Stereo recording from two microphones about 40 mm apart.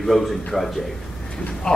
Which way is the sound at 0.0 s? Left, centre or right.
Centre.